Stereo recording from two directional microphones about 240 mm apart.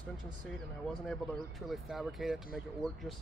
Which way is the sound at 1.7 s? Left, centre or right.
Centre.